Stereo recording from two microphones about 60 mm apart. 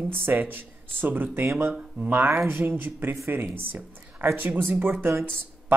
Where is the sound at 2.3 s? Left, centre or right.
Right.